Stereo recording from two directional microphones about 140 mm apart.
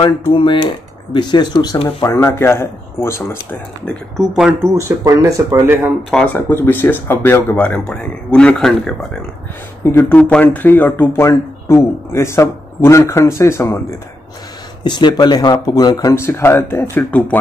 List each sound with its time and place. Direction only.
0.0 s speech: 35° left (ahead or behind)
1.9 s speech: 20° left (ahead or behind)
4.4 s speech: 10° right (ahead or behind)
4.7 s speech: 20° right (ahead or behind)
6.2 s speech: 15° left (ahead or behind)
9.8 s speech: 15° left (ahead or behind)
14.8 s speech: 30° left (ahead or behind); by 17.4 s 15° left (ahead or behind)